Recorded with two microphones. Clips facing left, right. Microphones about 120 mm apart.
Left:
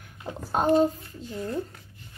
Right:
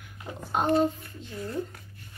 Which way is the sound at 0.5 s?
30° left (ahead or behind).